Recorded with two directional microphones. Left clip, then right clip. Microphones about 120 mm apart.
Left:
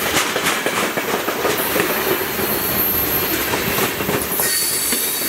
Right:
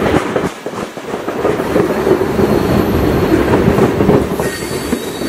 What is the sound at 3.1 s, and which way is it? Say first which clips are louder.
Train: right 7 dB; 25° left (ahead or behind).